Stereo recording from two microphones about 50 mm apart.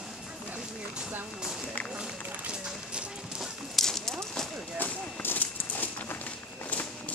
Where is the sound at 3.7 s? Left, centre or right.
Centre.